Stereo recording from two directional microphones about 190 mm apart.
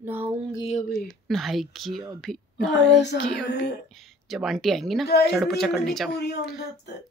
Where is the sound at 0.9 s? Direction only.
Centre (ahead or behind).